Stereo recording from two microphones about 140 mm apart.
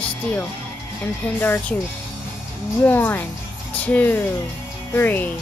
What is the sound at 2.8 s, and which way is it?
Speech, 15° left (ahead or behind).